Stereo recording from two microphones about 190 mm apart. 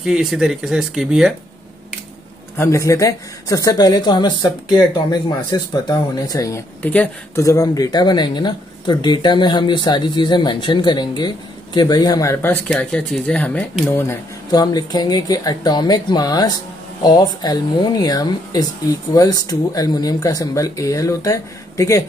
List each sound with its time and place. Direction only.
0.0 s speech: centre (ahead or behind)
2.5 s speech: 15° left (ahead or behind)